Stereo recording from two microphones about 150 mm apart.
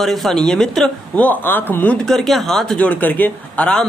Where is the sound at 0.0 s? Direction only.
Centre (ahead or behind).